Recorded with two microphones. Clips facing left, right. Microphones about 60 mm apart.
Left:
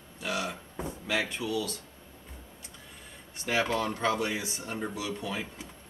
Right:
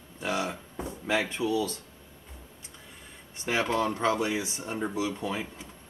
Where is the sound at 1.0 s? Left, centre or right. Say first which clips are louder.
Right 4 dB; right.